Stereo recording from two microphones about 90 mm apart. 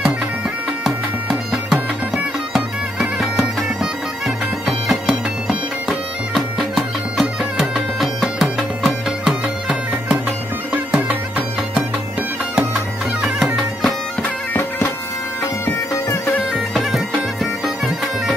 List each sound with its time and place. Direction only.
1.5 s music: 5° right (ahead or behind)
4.6 s bagpipes: centre (ahead or behind)
10.7 s music: 15° right (ahead or behind)
12.7 s music: centre (ahead or behind)
15.6 s bagpipes: 35° left (ahead or behind)
16.5 s bagpipes: centre (ahead or behind)